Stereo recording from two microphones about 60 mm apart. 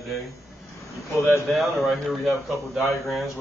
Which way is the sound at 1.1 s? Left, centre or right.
Left.